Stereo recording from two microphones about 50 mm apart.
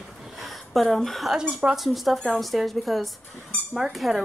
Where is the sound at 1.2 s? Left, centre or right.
Centre.